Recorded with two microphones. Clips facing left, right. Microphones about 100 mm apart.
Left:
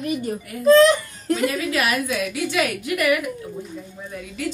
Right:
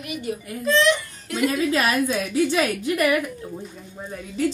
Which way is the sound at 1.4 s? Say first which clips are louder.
Right 6 dB; 30° right (ahead or behind).